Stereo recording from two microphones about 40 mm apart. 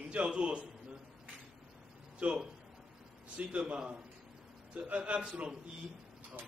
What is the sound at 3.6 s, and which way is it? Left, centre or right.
Speech, right.